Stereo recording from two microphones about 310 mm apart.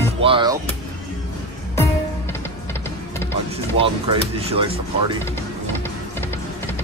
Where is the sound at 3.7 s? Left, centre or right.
Centre.